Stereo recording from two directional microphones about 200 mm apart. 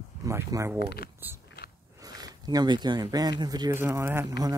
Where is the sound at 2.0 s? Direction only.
20° right (ahead or behind).